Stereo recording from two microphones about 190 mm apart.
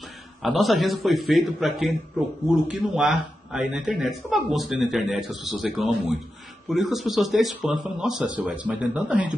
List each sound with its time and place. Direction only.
0.4 s a man's voice: centre (ahead or behind)